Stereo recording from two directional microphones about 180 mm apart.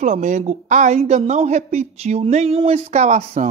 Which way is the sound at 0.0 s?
40° right (ahead or behind).